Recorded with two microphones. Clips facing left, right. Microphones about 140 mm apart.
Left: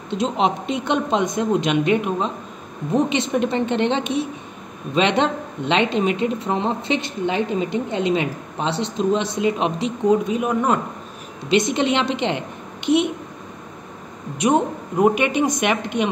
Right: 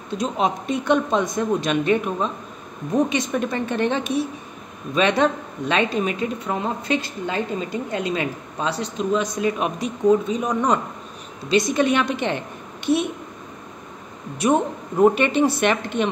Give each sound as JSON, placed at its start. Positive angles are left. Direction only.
{"t": 0.1, "sound": "speech", "side_deg": 25}
{"t": 10.3, "sound": "speech", "side_deg": 5}
{"t": 11.4, "sound": "speech", "side_deg": 20}
{"t": 14.4, "sound": "speech", "side_deg": 15}